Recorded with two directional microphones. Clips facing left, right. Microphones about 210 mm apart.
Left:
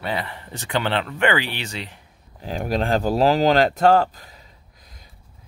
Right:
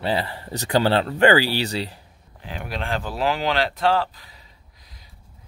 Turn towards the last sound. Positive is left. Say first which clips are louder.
# left 5 dB
turn(degrees=45)  # may be behind; listen again after turning